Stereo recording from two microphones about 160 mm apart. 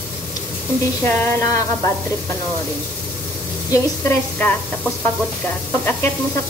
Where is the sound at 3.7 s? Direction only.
20° left (ahead or behind).